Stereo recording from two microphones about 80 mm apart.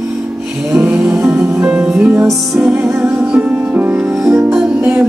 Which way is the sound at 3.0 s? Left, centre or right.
Centre.